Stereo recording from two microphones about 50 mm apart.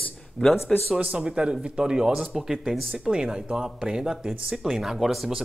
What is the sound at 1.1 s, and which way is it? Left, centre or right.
Speech, centre.